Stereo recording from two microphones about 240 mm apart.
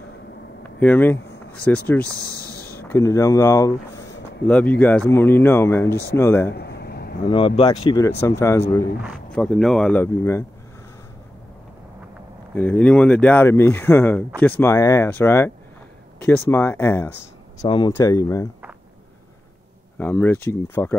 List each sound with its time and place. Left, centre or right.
0.7 s speech: centre
5.9 s speech: left
6.1 s speech: centre
6.5 s a sound: left
7.2 s speech: left
9.0 s speech: centre
12.5 s speech: centre
20.0 s speech: centre